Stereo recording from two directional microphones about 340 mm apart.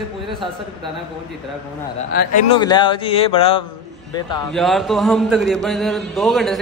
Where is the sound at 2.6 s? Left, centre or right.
Centre.